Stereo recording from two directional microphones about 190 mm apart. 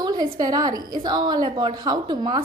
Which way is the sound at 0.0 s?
20° right (ahead or behind).